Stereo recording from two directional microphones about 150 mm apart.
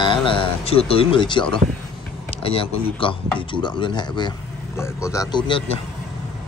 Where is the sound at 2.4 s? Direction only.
40° left (ahead or behind); by 5.4 s 20° left (ahead or behind).